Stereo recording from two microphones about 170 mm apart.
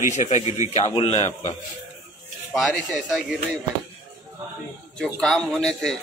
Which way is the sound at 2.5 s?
Centre (ahead or behind).